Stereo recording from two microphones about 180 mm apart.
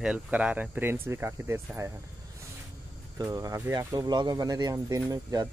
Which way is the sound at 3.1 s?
20° right (ahead or behind).